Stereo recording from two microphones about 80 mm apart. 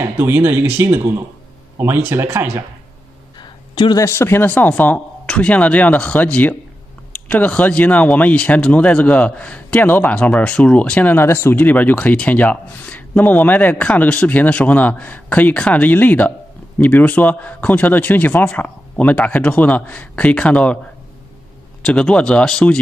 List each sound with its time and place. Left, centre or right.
0.0 s speech: right
3.3 s a sound: left
4.0 s speech: left
11.2 s speech: left; by 20.8 s centre
21.8 s speech: centre